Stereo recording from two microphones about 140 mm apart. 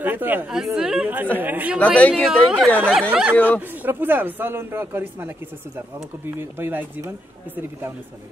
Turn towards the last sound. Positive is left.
turn(degrees=-15)  # may be behind; listen again after turning